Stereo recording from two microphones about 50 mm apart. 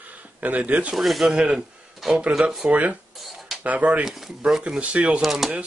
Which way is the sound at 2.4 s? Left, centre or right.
Right.